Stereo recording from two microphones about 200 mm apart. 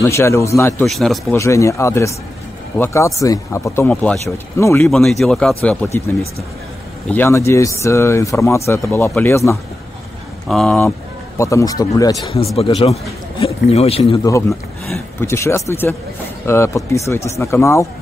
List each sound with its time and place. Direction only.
0.0 s speech: 15° left (ahead or behind)
0.8 s a man's voice: centre (ahead or behind)
1.3 s speech: 15° left (ahead or behind)
4.8 s a man's voice: centre (ahead or behind)
7.1 s speech: 10° left (ahead or behind)
10.5 s a man's voice: centre (ahead or behind)
11.3 s speech: 15° left (ahead or behind)
12.5 s a man's voice: 25° left (ahead or behind)
14.5 s speech: centre (ahead or behind)
15.2 s speech: 15° left (ahead or behind)